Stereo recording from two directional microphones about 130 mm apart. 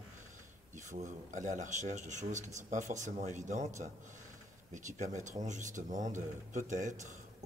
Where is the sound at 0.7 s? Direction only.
70° right (ahead or behind).